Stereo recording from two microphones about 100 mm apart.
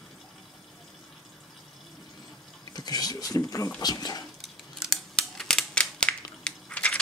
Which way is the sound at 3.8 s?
40° left (ahead or behind).